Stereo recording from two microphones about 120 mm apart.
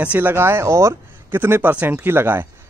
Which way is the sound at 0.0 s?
15° right (ahead or behind).